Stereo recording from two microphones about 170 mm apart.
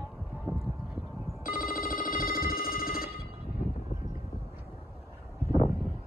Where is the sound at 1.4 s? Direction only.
55° left (ahead or behind).